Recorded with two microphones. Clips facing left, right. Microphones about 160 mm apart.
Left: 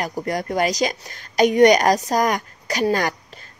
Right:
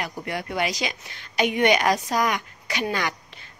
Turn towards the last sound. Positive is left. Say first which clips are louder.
# left 5 dB
turn(degrees=40)  # may be behind; listen again after turning